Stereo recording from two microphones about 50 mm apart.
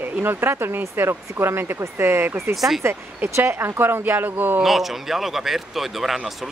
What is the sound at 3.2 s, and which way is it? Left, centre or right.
Speech, right.